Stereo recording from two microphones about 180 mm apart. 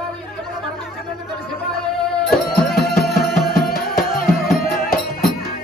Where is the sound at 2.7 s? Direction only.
60° left (ahead or behind).